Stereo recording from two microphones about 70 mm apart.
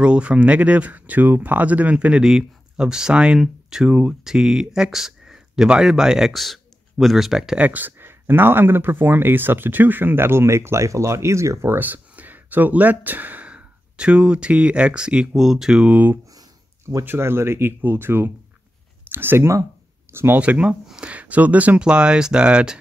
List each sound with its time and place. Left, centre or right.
0.0 s speech: centre
7.5 s speech: right
11.8 s speech: right
17.0 s speech: right
20.1 s a sound: right
20.3 s speech: centre